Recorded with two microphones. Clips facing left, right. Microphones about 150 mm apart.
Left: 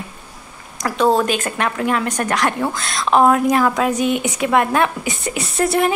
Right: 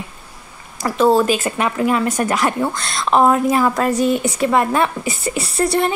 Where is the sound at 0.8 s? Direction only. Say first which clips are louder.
Right 2 dB; centre (ahead or behind).